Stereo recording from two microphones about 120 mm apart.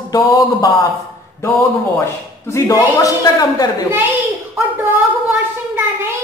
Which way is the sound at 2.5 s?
30° left (ahead or behind).